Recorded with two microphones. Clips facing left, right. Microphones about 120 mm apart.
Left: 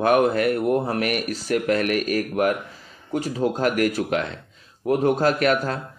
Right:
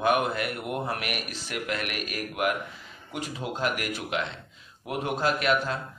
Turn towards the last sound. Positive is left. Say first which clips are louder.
# left 5 dB
turn(degrees=45)  # may be behind; listen again after turning